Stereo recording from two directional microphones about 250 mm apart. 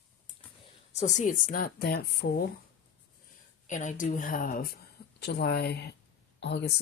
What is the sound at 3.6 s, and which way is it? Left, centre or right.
Speech, left.